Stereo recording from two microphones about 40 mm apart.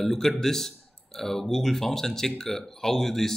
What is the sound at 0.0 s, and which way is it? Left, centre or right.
Speech, centre.